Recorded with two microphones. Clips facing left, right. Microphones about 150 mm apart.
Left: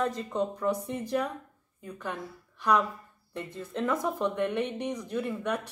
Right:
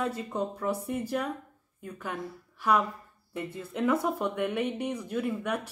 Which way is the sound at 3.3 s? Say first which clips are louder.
Right 1 dB; 10° right (ahead or behind).